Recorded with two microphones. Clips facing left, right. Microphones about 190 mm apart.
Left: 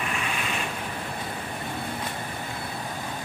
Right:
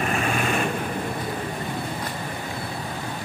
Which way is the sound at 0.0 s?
45° right (ahead or behind).